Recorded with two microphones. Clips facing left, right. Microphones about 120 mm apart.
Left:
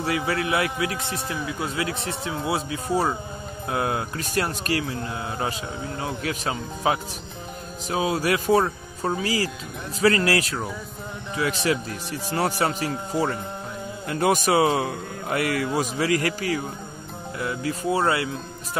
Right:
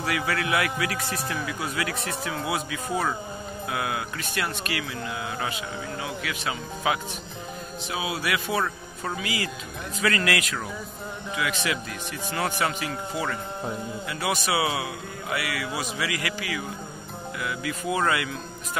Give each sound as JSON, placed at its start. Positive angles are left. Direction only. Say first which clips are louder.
{"t": 0.0, "sound": "a man's voice", "louder": "left 2 dB", "side_deg": 25}